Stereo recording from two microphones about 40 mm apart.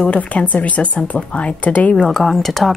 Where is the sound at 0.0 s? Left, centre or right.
Left.